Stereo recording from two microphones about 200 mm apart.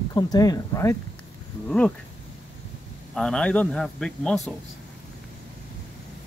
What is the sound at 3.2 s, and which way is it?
Speech, 5° left (ahead or behind).